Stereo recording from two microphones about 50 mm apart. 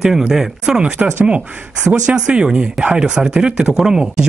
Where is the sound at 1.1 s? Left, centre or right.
Right.